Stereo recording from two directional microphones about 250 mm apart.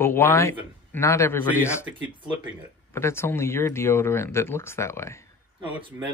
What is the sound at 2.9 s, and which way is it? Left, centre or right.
A man's voice, centre.